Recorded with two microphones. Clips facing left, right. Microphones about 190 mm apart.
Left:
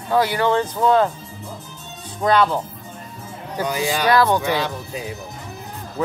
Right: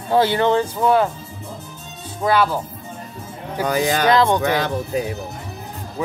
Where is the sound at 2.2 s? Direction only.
5° right (ahead or behind).